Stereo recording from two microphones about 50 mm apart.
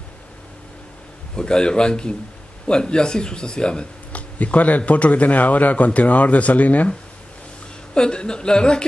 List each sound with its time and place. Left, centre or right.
1.3 s speech: centre
4.1 s speech: left
7.9 s speech: centre